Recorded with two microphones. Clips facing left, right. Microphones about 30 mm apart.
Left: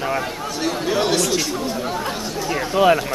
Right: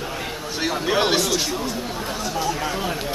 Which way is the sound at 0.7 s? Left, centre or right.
Centre.